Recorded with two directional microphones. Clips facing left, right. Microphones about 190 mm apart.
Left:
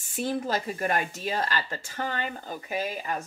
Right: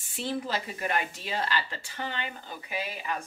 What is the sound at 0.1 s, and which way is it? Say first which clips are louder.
Speech: left 3 dB; 45° left (ahead or behind).